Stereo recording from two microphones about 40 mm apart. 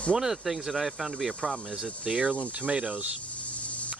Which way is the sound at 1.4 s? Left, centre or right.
Centre.